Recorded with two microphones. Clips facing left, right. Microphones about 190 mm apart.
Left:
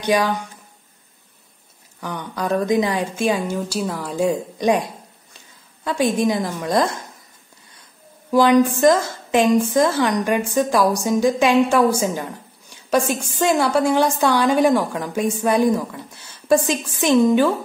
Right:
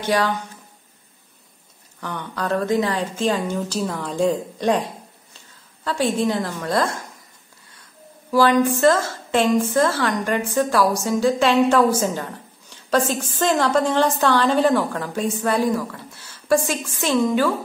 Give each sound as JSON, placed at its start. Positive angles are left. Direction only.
{"t": 0.0, "sound": "a woman's voice", "side_deg": 15}
{"t": 2.0, "sound": "a woman's voice", "side_deg": 10}
{"t": 8.3, "sound": "a woman's voice", "side_deg": 15}